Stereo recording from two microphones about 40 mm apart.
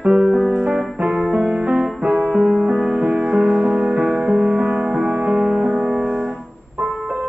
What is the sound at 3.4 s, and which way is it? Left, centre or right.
Music, centre.